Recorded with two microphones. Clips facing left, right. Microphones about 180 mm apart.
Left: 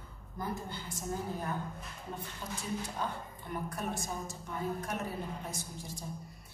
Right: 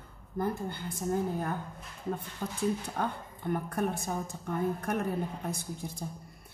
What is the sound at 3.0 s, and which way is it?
A woman's voice, 60° right (ahead or behind).